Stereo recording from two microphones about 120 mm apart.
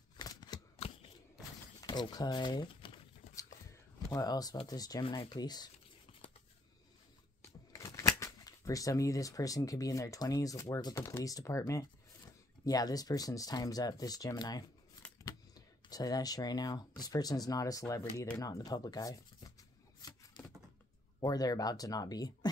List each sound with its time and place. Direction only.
0.2 s shuffling cards: 35° left (ahead or behind)
0.7 s shuffling cards: 55° left (ahead or behind)
1.8 s speech: 35° left (ahead or behind)
4.1 s speech: 30° left (ahead or behind)
7.7 s speech: 25° left (ahead or behind)
20.0 s shuffling cards: 35° left (ahead or behind)
21.2 s speech: 35° left (ahead or behind)